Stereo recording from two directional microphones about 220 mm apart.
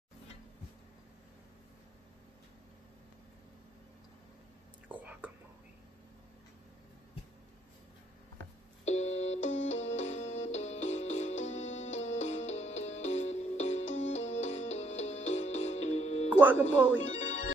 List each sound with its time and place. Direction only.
4.8 s whispering: 5° right (ahead or behind)
8.8 s music: 30° left (ahead or behind)